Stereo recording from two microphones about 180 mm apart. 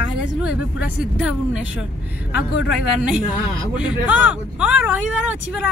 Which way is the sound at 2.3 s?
70° left (ahead or behind).